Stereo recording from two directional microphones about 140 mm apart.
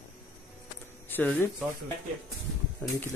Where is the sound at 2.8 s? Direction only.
10° left (ahead or behind).